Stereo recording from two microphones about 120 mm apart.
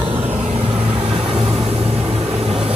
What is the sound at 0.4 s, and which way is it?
Vehicle, 65° right (ahead or behind).